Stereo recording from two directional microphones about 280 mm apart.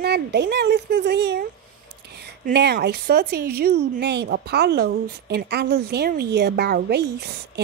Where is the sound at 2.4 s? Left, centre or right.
Right.